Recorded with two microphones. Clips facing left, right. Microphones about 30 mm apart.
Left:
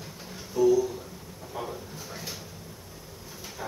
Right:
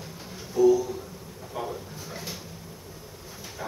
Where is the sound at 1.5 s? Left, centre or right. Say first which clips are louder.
Right 2 dB; centre.